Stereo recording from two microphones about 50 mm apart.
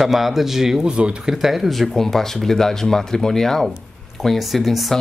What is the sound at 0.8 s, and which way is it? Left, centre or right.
Speech, centre.